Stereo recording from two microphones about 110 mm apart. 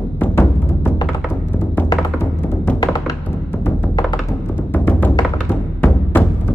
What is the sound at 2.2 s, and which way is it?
Music, 20° left (ahead or behind).